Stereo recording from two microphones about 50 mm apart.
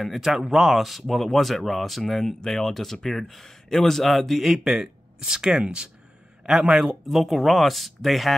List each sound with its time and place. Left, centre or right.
0.0 s speech: centre
6.8 s speech: centre